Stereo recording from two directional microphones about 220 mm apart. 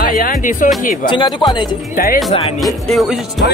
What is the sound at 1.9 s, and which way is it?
Speech, 40° left (ahead or behind).